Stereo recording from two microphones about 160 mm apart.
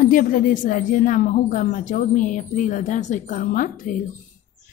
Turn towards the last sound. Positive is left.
turn(degrees=55)  # may be behind; listen again after turning